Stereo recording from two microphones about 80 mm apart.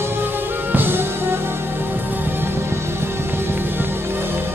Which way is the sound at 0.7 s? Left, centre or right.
Right.